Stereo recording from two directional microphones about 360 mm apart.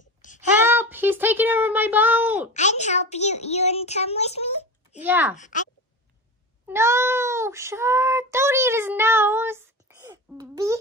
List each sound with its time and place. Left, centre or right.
0.2 s a sound: left
0.7 s a sound: centre
2.5 s a child's voice: centre
5.0 s speech: centre
5.4 s speech: left
6.7 s child singing: centre